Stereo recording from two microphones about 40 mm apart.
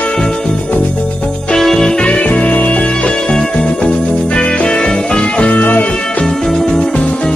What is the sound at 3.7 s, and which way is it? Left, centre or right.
Music, left.